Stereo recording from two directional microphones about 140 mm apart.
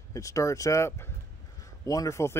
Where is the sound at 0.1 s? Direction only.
25° left (ahead or behind).